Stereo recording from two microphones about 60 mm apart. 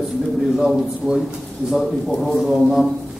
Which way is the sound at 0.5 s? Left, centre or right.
Centre.